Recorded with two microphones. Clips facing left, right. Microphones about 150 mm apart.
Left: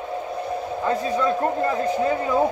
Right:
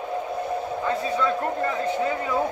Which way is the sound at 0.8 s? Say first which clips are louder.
Left 3 dB; 35° left (ahead or behind).